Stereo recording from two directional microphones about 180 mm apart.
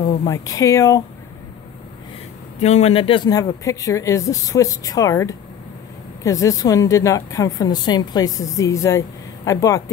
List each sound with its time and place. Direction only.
0.3 s a woman's voice: 15° left (ahead or behind)
2.6 s a woman's voice: 35° left (ahead or behind); by 9.8 s 20° left (ahead or behind)